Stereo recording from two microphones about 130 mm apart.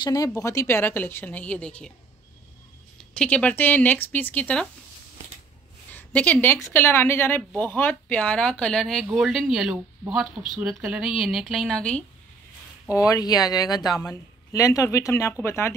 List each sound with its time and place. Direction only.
0.0 s speech: 30° left (ahead or behind); by 1.9 s 10° left (ahead or behind)
3.0 s speech: 10° left (ahead or behind)
5.9 s a woman's voice: 10° left (ahead or behind)
13.1 s speech: 30° left (ahead or behind)